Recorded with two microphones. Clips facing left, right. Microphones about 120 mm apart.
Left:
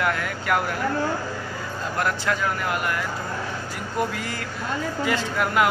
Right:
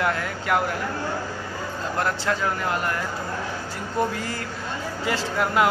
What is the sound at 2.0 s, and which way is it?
Speech, 30° right (ahead or behind).